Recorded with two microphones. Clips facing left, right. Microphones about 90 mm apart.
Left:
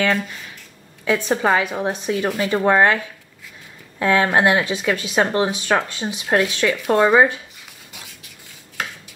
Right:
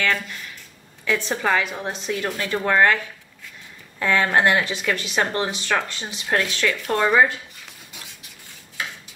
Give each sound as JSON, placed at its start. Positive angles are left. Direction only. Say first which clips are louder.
{"t": 1.0, "sound": "speech", "louder": "left 4 dB", "side_deg": 20}
{"t": 4.0, "sound": "speech", "louder": "left 3 dB", "side_deg": 15}